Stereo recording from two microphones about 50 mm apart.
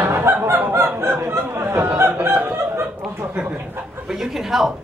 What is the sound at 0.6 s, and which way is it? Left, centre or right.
Honk, right.